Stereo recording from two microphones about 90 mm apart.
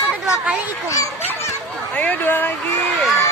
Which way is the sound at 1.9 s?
20° left (ahead or behind).